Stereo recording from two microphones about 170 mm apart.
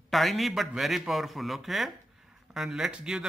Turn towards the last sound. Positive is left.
turn(degrees=-5)  # may be behind; listen again after turning